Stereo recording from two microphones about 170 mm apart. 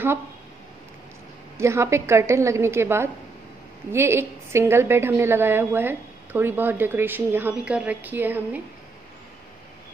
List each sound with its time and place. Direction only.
1.6 s a woman's voice: 15° right (ahead or behind)